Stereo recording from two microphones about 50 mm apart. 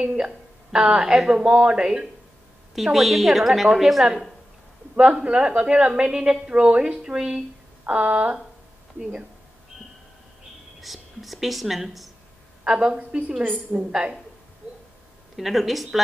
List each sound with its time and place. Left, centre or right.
0.0 s a woman's voice: centre
2.7 s a woman's voice: centre
4.9 s a woman's voice: right
10.8 s a woman's voice: centre
12.6 s a woman's voice: centre
15.3 s a woman's voice: centre